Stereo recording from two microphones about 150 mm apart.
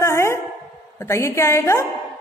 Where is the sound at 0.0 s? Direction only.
20° left (ahead or behind).